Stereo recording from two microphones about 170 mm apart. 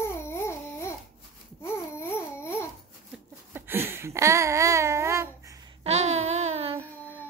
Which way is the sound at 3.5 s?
15° right (ahead or behind).